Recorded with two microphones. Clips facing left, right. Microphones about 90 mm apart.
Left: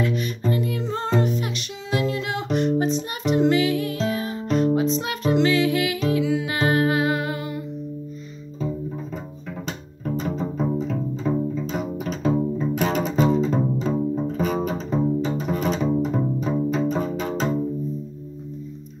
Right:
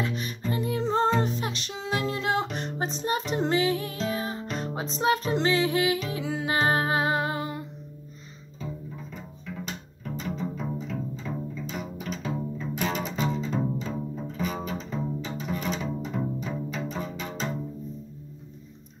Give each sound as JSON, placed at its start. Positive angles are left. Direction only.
{"t": 0.0, "sound": "music", "side_deg": -30}
{"t": 9.7, "sound": "music", "side_deg": 40}
{"t": 12.3, "sound": "music", "side_deg": 25}
{"t": 12.8, "sound": "music", "side_deg": 40}
{"t": 14.1, "sound": "double bass", "side_deg": 45}